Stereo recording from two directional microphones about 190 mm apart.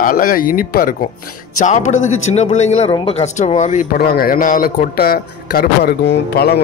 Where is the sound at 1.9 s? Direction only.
90° left.